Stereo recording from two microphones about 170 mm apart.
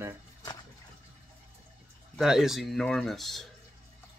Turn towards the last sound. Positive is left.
turn(degrees=0)  # may be behind; listen again after turning